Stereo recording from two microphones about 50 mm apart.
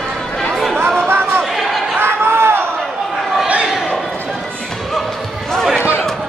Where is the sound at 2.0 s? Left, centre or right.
Right.